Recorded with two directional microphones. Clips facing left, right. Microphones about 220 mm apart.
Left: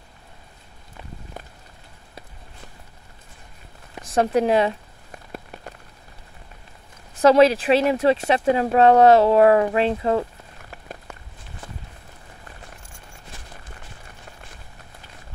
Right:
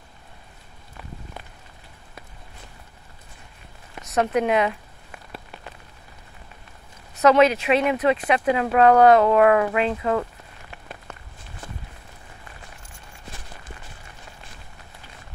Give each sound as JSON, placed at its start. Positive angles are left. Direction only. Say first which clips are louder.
{"t": 4.0, "sound": "a sound", "louder": "left 2 dB", "side_deg": 30}
{"t": 5.3, "sound": "rain on surface", "louder": "left 3 dB", "side_deg": 45}
{"t": 7.2, "sound": "speech", "louder": "left 2 dB", "side_deg": 30}